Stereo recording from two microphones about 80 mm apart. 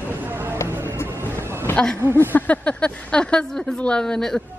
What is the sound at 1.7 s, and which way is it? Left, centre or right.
Speech, centre.